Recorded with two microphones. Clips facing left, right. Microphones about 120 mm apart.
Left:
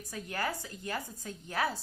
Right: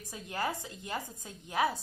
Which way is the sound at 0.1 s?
20° right (ahead or behind).